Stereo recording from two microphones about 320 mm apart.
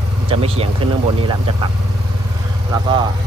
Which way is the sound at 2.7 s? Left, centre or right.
Centre.